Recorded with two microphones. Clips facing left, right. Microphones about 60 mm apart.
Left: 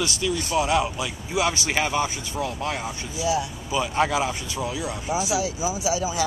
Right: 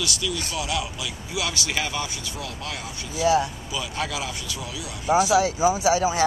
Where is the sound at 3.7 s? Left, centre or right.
Left.